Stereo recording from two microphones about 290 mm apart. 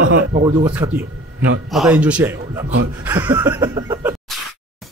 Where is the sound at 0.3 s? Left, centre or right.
Centre.